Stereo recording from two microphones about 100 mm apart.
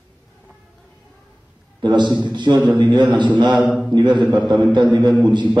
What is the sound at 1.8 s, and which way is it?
A man's voice, 50° right (ahead or behind).